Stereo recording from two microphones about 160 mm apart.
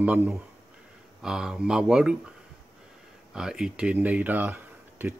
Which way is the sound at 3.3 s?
5° right (ahead or behind).